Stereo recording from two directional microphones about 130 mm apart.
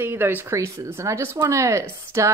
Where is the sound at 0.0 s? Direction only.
15° right (ahead or behind).